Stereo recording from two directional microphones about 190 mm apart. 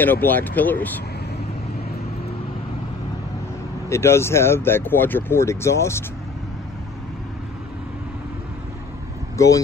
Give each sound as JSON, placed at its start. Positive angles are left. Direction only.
{"t": 0.0, "sound": "speech", "side_deg": 10}
{"t": 3.9, "sound": "speech", "side_deg": 15}
{"t": 9.4, "sound": "speech", "side_deg": 15}